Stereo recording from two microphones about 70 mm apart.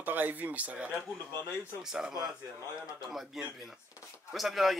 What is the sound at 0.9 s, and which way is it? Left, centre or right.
Speech, left.